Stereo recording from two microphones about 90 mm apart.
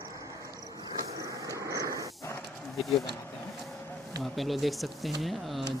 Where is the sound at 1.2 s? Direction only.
40° right (ahead or behind).